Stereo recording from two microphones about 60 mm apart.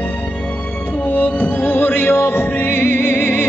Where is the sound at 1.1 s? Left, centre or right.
Left.